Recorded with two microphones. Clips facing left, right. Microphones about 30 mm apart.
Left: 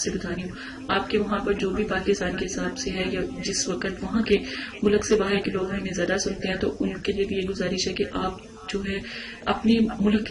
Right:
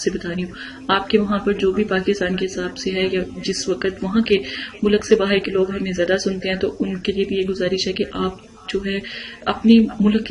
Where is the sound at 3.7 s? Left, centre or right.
Centre.